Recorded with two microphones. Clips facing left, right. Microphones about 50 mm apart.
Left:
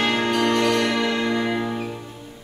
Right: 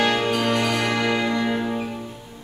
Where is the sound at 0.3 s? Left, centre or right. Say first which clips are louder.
Left 2 dB; centre.